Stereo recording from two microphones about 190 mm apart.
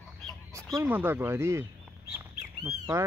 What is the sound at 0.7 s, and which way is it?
Speech, 10° right (ahead or behind).